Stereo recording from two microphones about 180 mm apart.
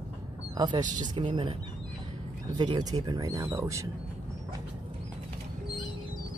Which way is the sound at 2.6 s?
25° right (ahead or behind).